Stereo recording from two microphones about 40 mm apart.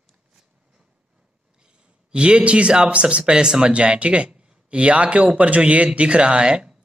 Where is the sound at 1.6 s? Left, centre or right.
Right.